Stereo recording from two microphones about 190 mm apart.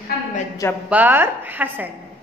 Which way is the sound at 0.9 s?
10° right (ahead or behind).